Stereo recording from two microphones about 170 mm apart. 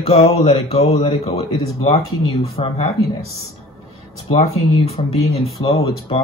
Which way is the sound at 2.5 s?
35° left (ahead or behind).